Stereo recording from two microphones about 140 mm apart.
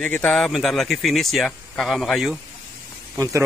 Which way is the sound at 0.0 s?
10° left (ahead or behind).